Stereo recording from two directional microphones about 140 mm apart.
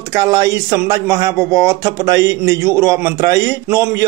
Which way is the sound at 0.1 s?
25° right (ahead or behind).